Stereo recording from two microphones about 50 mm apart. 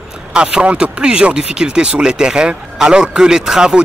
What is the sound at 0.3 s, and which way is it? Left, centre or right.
Speech, centre.